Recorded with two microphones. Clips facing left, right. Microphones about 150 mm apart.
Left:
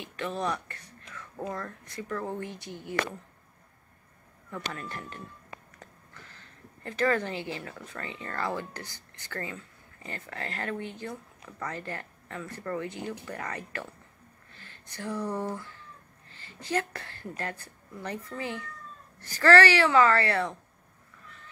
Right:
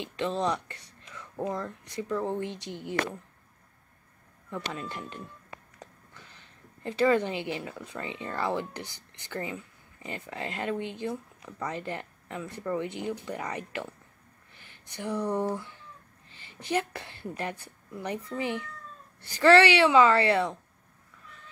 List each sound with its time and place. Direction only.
0.0 s speech: 25° right (ahead or behind)
4.7 s a woman's voice: 20° right (ahead or behind)
14.5 s a sound: 15° right (ahead or behind)
15.2 s a woman's voice: 20° right (ahead or behind)